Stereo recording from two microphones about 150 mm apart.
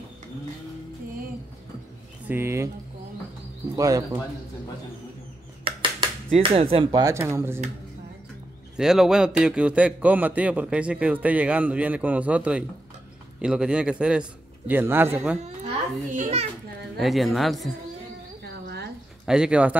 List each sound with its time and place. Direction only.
2.2 s speech: 15° right (ahead or behind)
3.7 s speech: 25° right (ahead or behind)
5.6 s dishes: 35° right (ahead or behind)
6.9 s a man's voice: 25° right (ahead or behind)
8.7 s a woman's voice: 5° right (ahead or behind)
15.4 s a child's voice: 50° right (ahead or behind)
16.9 s a woman's voice: centre (ahead or behind)
19.2 s a man's voice: 5° right (ahead or behind)